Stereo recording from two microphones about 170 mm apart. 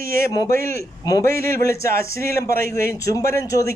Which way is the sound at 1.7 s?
15° left (ahead or behind).